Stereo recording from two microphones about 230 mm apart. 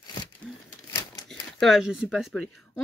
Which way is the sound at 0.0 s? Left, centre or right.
Centre.